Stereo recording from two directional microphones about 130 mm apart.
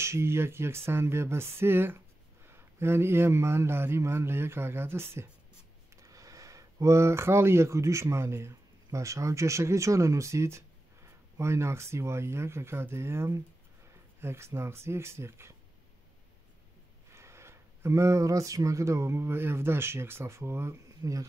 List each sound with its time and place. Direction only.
0.0 s speech: 20° right (ahead or behind)
6.0 s speech: 25° right (ahead or behind)
17.1 s speech: 20° right (ahead or behind)